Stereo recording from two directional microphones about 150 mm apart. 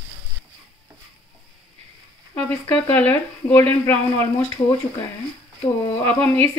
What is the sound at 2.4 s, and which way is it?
Speech, 10° left (ahead or behind).